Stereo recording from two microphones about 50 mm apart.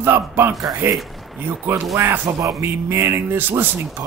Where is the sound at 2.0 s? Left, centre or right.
Right.